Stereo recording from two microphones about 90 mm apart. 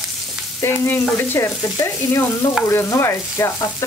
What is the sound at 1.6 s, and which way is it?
Frying, 35° left (ahead or behind).